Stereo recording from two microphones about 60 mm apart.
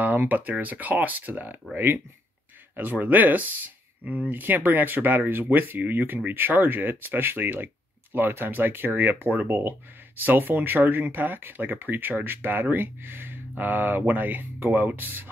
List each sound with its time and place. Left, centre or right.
0.0 s speech: right
2.7 s speech: right